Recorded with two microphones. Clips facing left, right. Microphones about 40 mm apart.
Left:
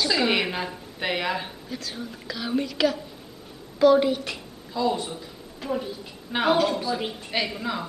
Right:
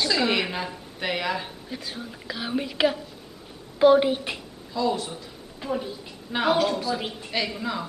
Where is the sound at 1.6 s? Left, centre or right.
Centre.